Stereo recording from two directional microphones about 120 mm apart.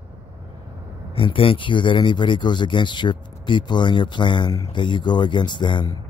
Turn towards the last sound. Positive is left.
turn(degrees=40)  # may be behind; listen again after turning